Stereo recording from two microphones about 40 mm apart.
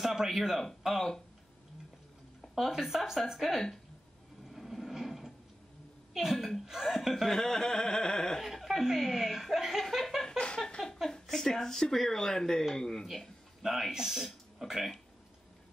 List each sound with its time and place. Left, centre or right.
0.0 s speech: centre
2.5 s speech: centre
4.5 s a sound: centre
6.1 s speech: centre
7.3 s speech: centre
8.4 s speech: centre
10.2 s a sound: left
11.1 s speech: centre
13.0 s a man's voice: centre